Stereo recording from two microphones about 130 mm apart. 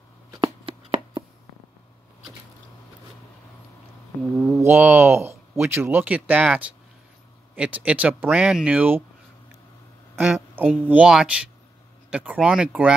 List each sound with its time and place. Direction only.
0.4 s hands: 40° right (ahead or behind)
4.6 s a sound: 15° right (ahead or behind)
5.7 s speech: 15° right (ahead or behind)
10.1 s speech: 10° right (ahead or behind)